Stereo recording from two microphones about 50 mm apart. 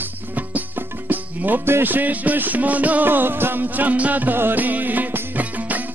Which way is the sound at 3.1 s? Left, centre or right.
Right.